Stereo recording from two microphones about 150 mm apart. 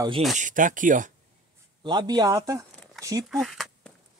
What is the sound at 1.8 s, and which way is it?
Speech, 30° right (ahead or behind).